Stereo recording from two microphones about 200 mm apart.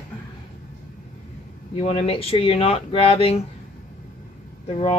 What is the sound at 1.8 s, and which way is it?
Speech, 30° left (ahead or behind).